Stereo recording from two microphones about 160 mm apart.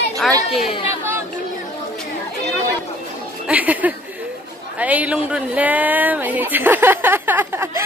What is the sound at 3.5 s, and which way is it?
Speech, 10° right (ahead or behind).